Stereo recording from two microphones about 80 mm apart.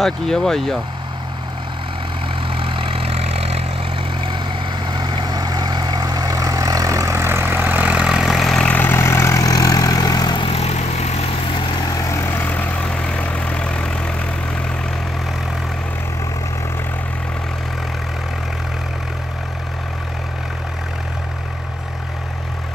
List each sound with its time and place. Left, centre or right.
0.0 s speech: centre
4.8 s vehicle: right; by 8.6 s centre
8.6 s vehicle: left
9.0 s vehicle: left
12.3 s vehicle: left